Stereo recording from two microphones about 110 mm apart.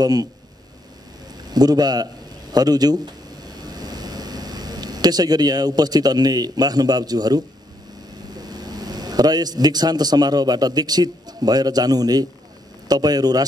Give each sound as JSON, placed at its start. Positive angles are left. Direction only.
{"t": 0.0, "sound": "speech", "side_deg": -35}
{"t": 1.5, "sound": "speech", "side_deg": -40}
{"t": 3.4, "sound": "a sound", "side_deg": -40}
{"t": 8.3, "sound": "speech", "side_deg": -35}